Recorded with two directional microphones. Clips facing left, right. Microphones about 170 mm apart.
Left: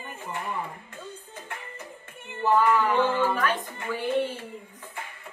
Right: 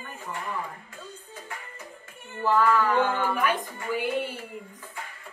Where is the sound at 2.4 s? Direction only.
25° left (ahead or behind).